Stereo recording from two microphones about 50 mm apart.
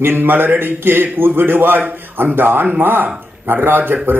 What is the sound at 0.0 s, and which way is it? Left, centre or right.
Speech, right.